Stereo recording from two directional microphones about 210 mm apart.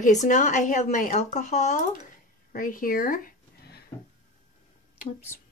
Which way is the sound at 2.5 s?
40° left (ahead or behind).